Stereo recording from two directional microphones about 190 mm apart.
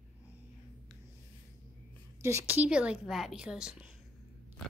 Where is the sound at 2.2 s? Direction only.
10° right (ahead or behind).